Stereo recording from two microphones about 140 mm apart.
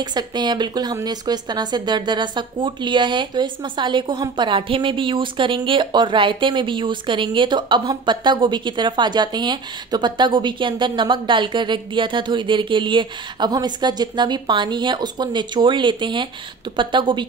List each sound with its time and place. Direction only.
0.0 s a woman's voice: 30° right (ahead or behind)